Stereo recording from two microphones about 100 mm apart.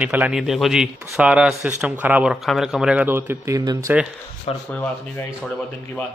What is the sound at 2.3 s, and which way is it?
Speech, centre (ahead or behind).